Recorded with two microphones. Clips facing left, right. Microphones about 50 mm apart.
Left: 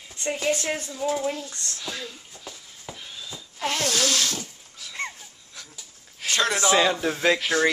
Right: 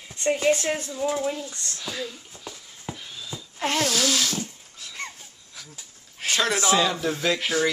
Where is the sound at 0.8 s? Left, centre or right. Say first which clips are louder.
Right 1 dB; centre.